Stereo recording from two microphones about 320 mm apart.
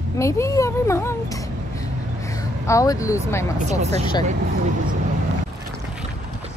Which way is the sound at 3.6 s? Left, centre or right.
Right.